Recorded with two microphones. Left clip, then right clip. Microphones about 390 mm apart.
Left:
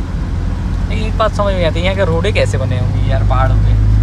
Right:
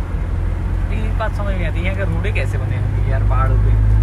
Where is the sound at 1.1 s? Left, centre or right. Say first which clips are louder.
Left 11 dB; centre.